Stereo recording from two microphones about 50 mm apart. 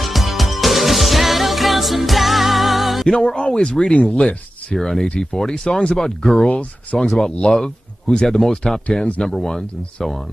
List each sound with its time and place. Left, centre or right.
0.0 s music: centre
3.1 s speech: centre